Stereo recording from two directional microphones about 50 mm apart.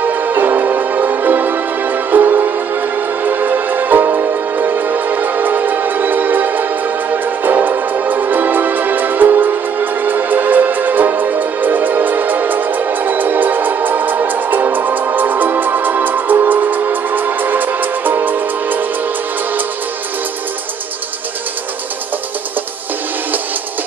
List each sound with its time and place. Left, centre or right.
0.0 s music: right